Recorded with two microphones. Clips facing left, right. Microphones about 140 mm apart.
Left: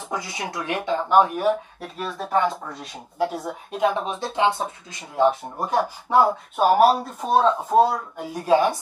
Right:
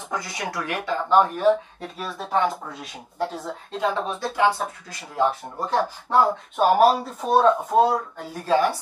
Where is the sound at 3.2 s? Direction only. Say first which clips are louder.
Left 3 dB; 10° left (ahead or behind).